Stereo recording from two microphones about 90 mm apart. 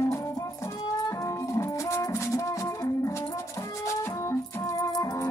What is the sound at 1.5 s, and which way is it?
Music, 30° left (ahead or behind).